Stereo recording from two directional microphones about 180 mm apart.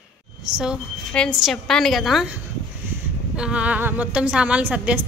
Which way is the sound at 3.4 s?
5° right (ahead or behind).